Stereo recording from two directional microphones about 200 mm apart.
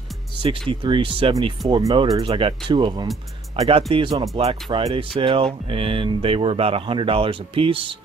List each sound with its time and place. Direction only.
0.7 s speech: 25° right (ahead or behind)